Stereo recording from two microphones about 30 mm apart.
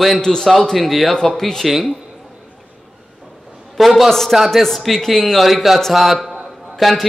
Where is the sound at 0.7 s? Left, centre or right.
Centre.